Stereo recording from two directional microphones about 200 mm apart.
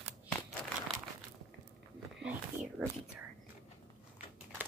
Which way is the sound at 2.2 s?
5° right (ahead or behind).